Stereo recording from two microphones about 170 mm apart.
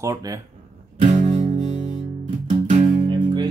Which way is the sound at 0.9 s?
40° right (ahead or behind).